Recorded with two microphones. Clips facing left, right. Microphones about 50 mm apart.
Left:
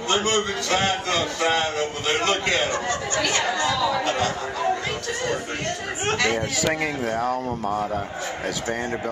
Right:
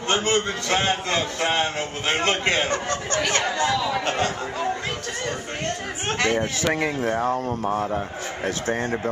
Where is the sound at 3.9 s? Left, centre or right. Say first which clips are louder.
Left 1 dB; right.